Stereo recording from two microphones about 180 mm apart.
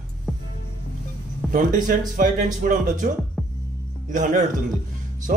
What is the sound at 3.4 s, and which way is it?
Music, centre (ahead or behind).